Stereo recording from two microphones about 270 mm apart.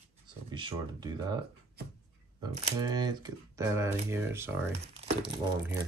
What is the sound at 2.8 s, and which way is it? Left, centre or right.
Speech, centre.